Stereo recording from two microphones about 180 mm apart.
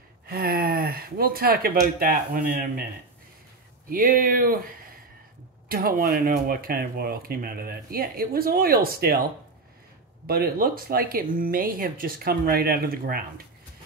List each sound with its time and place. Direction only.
0.3 s speech: 55° right (ahead or behind)
3.9 s speech: 50° right (ahead or behind)
10.2 s speech: 55° right (ahead or behind)